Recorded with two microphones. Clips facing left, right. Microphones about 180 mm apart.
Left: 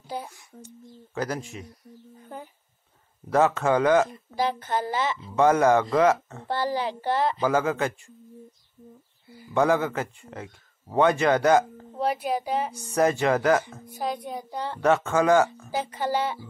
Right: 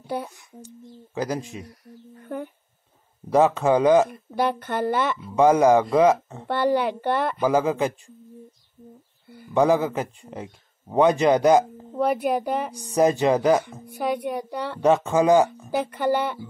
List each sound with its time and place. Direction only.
0.0 s speech: 65° right (ahead or behind)
1.1 s speech: 15° right (ahead or behind)
1.7 s a child's voice: 65° right (ahead or behind)
3.3 s speech: 15° right (ahead or behind)
4.1 s a child's voice: 60° right (ahead or behind)
5.3 s speech: 15° right (ahead or behind)
6.4 s a child's voice: 60° right (ahead or behind)
7.4 s speech: 15° right (ahead or behind)
9.5 s speech: 15° right (ahead or behind)
12.0 s a child's voice: 55° right (ahead or behind)
12.7 s speech: 15° right (ahead or behind)
13.8 s a child's voice: 65° right (ahead or behind)
14.8 s speech: 15° right (ahead or behind)
15.7 s a child's voice: 60° right (ahead or behind)